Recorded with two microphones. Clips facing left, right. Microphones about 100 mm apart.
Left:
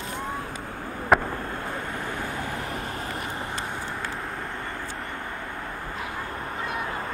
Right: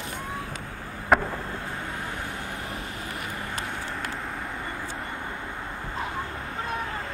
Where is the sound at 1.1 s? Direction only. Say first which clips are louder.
Left 1 dB; 5° left (ahead or behind).